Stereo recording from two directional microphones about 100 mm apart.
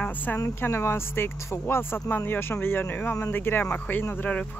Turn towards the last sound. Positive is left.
turn(degrees=20)  # may be behind; listen again after turning